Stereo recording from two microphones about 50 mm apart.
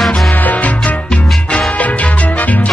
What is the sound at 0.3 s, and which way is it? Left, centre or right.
Music, left.